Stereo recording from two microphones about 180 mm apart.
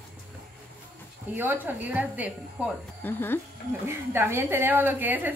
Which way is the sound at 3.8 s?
15° right (ahead or behind).